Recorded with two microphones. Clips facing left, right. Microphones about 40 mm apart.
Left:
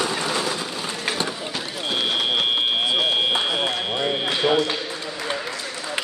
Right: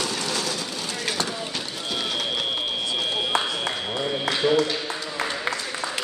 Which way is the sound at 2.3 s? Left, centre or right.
Left.